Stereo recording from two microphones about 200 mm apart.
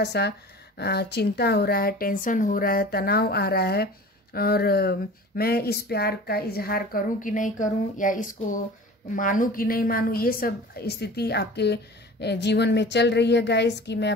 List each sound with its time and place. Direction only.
0.0 s a woman's voice: 55° left (ahead or behind)